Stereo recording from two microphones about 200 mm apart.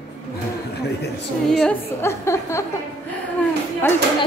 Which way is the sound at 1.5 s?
5° left (ahead or behind).